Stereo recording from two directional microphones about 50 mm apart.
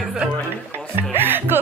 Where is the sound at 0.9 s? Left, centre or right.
Right.